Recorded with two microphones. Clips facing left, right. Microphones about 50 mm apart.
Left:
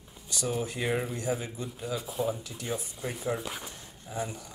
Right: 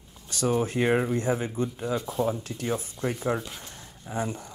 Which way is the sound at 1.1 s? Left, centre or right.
Right.